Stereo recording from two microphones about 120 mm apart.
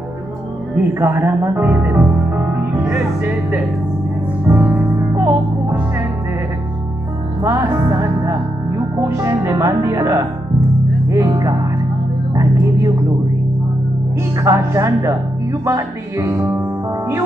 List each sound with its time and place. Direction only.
0.9 s speech: 20° right (ahead or behind)
4.5 s music: 15° right (ahead or behind)
7.4 s speech: 25° right (ahead or behind)
14.4 s speech: 25° right (ahead or behind)